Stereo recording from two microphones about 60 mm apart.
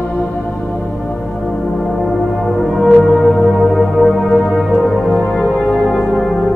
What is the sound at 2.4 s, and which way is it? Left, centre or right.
Music, centre.